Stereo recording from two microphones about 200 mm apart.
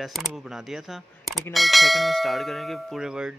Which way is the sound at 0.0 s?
Centre (ahead or behind).